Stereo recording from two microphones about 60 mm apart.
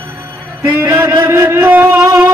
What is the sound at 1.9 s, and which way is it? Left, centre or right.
Music, right.